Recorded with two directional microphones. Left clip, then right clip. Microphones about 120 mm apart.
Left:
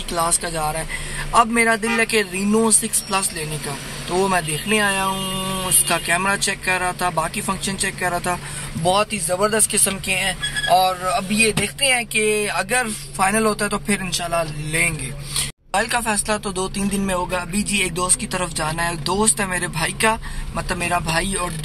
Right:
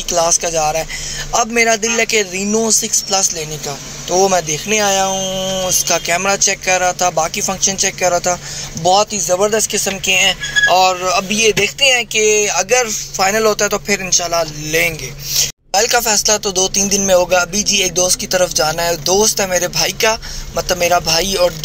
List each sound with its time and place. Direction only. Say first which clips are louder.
0.1 s music: right 8 dB; 25° right (ahead or behind)
2.8 s speech: right 6 dB; 15° right (ahead or behind)
4.1 s music: right 6 dB; 15° right (ahead or behind)
5.9 s speech: right 2 dB; 25° right (ahead or behind)
8.8 s speech: right 6 dB; 5° right (ahead or behind)
10.0 s music: right 12 dB; 25° right (ahead or behind)
12.2 s speech: right 6 dB; 5° right (ahead or behind)
12.6 s music: right 7 dB; 20° right (ahead or behind)